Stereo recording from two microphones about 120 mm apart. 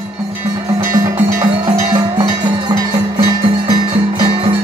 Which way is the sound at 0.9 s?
25° right (ahead or behind).